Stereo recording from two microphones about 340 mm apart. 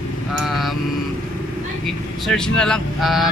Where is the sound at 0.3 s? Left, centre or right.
Centre.